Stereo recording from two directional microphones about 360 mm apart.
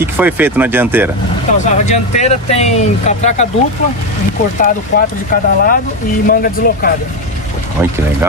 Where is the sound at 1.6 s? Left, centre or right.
Centre.